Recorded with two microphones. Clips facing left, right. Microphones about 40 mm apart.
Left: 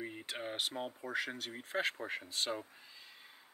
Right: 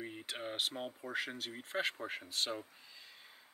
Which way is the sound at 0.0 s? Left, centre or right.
Centre.